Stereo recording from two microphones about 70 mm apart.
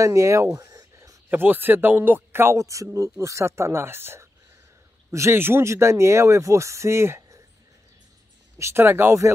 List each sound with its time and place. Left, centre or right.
0.0 s speech: right
1.3 s speech: right
8.5 s speech: right